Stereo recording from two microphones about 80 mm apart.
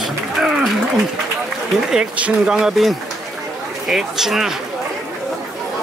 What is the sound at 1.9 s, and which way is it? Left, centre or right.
Speech, centre.